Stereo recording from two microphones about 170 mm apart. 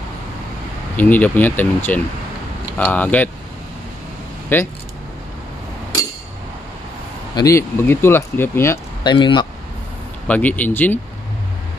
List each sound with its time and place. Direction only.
0.9 s speech: 10° left (ahead or behind)
4.5 s speech: 10° left (ahead or behind)
7.3 s speech: 20° left (ahead or behind)
9.0 s speech: 25° left (ahead or behind)
10.2 s speech: 10° left (ahead or behind)